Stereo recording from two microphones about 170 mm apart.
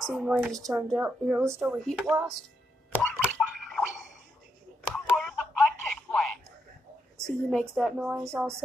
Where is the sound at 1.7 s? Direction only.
Centre (ahead or behind).